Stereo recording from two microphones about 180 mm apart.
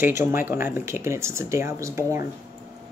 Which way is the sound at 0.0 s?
10° right (ahead or behind).